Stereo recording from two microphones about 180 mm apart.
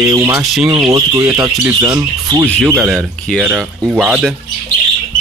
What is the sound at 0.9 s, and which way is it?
Speech, 15° right (ahead or behind).